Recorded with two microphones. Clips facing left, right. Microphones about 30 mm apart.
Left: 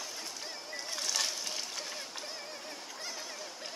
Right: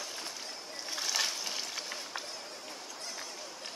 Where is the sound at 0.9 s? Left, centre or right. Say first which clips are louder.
Right 2 dB; centre.